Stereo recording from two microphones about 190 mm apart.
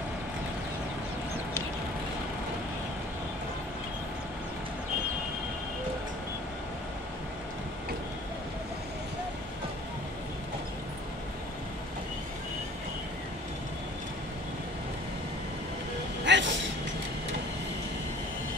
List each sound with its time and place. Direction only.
16.3 s vehicle: 70° right (ahead or behind)